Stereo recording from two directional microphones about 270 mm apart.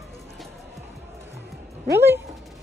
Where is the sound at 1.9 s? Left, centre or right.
Centre.